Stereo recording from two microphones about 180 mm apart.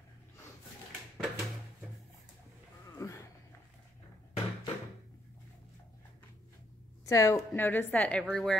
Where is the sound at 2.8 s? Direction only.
15° left (ahead or behind).